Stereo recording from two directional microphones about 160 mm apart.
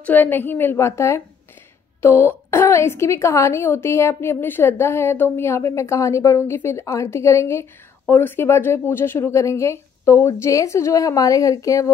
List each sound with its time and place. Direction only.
0.0 s a woman's voice: 10° left (ahead or behind)